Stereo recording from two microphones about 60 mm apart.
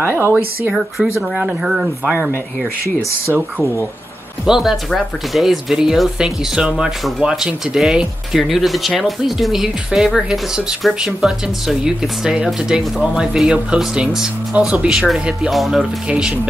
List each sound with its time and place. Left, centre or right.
0.0 s speech: right
1.3 s speech: centre
4.5 s speech: centre
15.0 s speech: centre
15.8 s speech: centre